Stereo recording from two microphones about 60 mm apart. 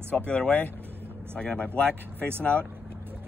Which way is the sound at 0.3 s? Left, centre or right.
Left.